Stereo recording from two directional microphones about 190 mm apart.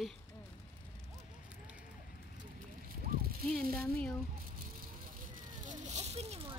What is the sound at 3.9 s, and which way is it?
Speech, 5° left (ahead or behind).